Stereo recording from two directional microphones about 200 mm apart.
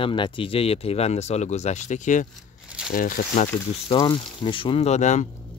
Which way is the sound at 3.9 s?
25° left (ahead or behind).